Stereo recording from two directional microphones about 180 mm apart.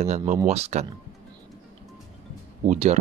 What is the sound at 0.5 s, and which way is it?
Speech, 35° right (ahead or behind).